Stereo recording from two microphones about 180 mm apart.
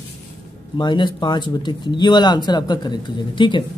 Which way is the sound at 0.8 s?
25° left (ahead or behind).